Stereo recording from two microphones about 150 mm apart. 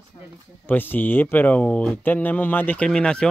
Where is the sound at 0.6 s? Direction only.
10° left (ahead or behind).